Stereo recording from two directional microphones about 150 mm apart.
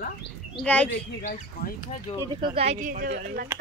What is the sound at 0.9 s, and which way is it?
Speech, 65° left (ahead or behind).